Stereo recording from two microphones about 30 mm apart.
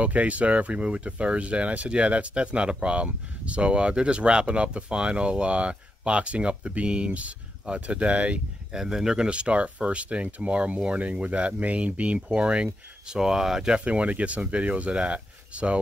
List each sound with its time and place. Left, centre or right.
0.0 s speech: right
8.7 s speech: centre
9.3 s speech: right
11.0 s speech: right
12.6 s speech: right
13.3 s speech: centre
13.7 s speech: right